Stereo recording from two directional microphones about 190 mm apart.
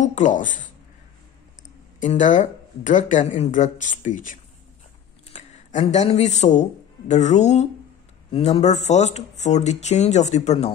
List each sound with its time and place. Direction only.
0.0 s speech: 40° left (ahead or behind)
2.0 s speech: 40° left (ahead or behind)